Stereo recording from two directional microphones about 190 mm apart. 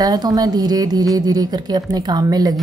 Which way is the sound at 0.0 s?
20° right (ahead or behind).